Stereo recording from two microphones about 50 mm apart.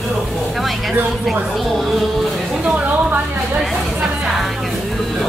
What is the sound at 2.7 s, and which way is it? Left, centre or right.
Speech, right.